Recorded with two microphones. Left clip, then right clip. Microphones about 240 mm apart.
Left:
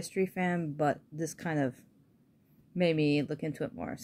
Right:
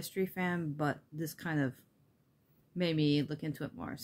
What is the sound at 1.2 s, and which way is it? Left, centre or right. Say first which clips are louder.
Speech: left 3 dB; right.